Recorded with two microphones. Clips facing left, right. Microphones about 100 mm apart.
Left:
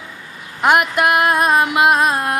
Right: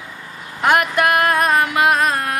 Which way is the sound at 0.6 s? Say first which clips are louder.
Left 1 dB; 15° left (ahead or behind).